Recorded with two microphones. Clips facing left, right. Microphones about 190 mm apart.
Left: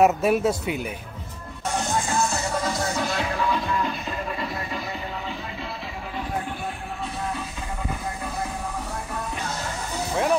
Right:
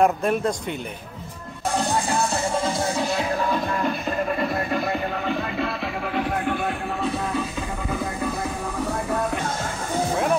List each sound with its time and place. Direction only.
0.0 s speech: 5° left (ahead or behind)
1.8 s music: 35° right (ahead or behind)
3.3 s music: 45° right (ahead or behind); by 7.4 s 75° right (ahead or behind)